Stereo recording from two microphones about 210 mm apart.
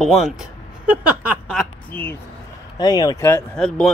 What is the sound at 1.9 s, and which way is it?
Speech, 10° left (ahead or behind).